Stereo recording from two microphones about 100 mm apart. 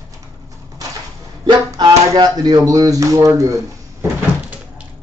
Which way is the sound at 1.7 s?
40° right (ahead or behind).